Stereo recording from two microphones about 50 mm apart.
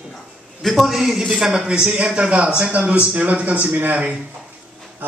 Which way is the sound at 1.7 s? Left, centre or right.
Centre.